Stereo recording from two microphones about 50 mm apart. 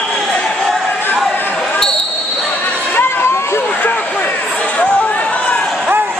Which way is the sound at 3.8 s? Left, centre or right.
Left.